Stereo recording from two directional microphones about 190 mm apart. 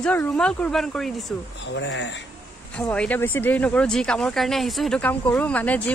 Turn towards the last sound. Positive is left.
turn(degrees=10)  # may be behind; listen again after turning